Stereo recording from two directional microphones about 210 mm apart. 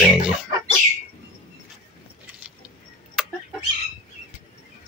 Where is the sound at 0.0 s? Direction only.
Centre (ahead or behind).